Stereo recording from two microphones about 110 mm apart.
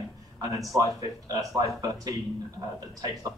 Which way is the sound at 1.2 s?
30° right (ahead or behind).